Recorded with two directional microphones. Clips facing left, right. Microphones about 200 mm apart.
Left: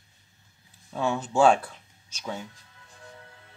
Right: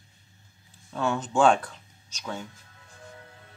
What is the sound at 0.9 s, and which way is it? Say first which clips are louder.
Speech: left 1 dB; 10° left (ahead or behind).